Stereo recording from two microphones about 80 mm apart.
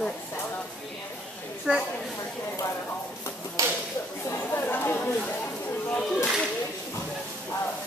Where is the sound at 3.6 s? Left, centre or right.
Right.